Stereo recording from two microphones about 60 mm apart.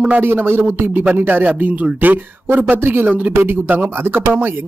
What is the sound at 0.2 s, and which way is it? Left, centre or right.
Speech, right.